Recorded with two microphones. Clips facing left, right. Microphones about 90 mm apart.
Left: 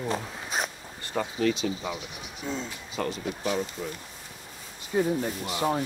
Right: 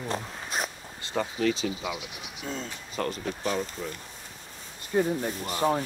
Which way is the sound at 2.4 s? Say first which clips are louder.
Left 2 dB; 45° right (ahead or behind).